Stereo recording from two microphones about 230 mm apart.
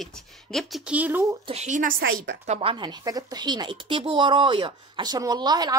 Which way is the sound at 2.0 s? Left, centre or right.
Right.